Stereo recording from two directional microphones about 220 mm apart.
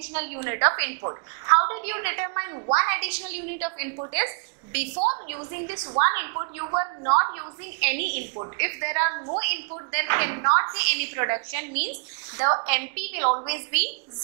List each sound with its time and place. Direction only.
0.1 s a woman's voice: 10° right (ahead or behind)
4.9 s a woman's voice: 30° right (ahead or behind)
5.3 s a woman's voice: 15° right (ahead or behind)